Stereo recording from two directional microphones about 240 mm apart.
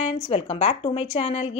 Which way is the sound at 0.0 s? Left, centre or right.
Left.